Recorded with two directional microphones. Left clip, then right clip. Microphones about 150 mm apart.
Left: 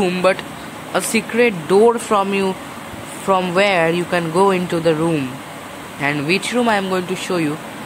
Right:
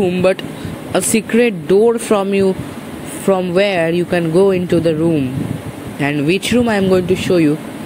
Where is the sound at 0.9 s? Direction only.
20° right (ahead or behind).